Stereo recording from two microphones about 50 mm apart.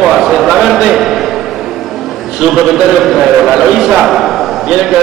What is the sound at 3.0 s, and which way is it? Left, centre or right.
A man's voice, centre.